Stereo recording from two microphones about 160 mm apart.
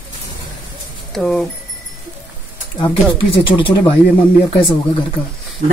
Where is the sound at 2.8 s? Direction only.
30° left (ahead or behind).